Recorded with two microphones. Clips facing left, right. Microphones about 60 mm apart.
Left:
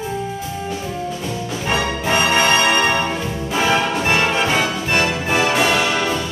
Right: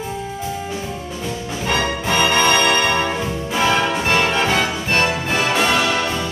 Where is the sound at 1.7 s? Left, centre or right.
Centre.